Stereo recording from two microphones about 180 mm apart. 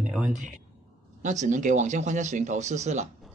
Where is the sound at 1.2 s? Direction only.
40° right (ahead or behind).